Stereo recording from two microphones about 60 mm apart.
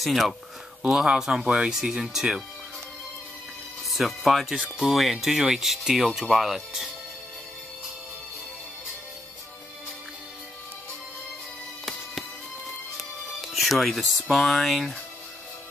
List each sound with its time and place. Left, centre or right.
0.0 s speech: centre
3.9 s speech: centre
13.4 s speech: centre